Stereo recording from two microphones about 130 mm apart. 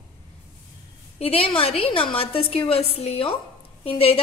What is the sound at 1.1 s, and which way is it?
A woman's voice, 45° left (ahead or behind).